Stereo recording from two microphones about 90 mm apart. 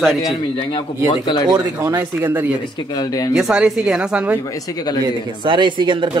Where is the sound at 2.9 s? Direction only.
50° left (ahead or behind).